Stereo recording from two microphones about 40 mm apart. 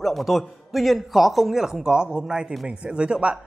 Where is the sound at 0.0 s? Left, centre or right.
Centre.